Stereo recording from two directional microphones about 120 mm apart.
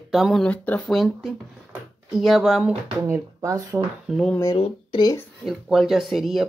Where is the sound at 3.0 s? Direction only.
25° right (ahead or behind).